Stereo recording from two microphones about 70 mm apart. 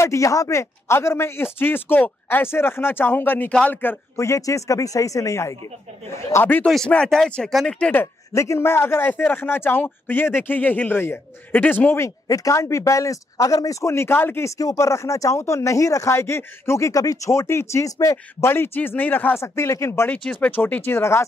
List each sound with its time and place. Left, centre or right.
0.0 s a man's voice: left
4.2 s speech: left
6.6 s speech: centre
8.3 s a man's voice: left
12.0 s speech: left
14.6 s speech: left
16.2 s speech: left
17.3 s a man's voice: left
17.8 s speech: left
18.1 s a man's voice: left
20.1 s speech: centre; by 21.3 s left